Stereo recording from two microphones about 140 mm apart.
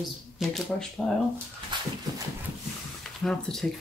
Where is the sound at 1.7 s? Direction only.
35° right (ahead or behind).